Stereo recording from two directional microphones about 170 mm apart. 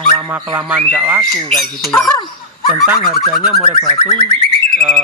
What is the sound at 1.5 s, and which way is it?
Speech, 5° left (ahead or behind).